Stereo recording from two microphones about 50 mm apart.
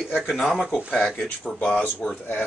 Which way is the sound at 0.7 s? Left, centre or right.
Centre.